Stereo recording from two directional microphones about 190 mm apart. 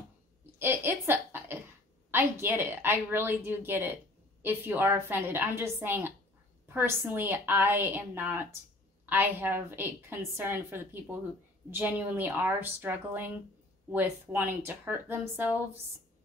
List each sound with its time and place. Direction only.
0.6 s a woman's voice: 10° right (ahead or behind)